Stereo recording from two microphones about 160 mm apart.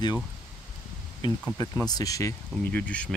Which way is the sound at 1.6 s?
20° left (ahead or behind).